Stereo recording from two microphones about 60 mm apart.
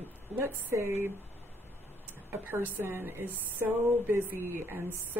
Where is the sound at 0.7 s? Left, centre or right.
Right.